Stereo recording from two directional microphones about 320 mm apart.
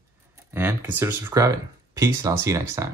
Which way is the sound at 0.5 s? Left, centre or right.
Centre.